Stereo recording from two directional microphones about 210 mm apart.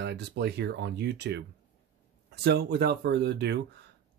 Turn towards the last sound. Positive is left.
turn(degrees=-55)  # may be behind; listen again after turning